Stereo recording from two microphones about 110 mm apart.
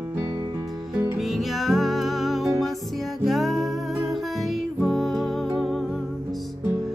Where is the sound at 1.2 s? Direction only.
Centre (ahead or behind).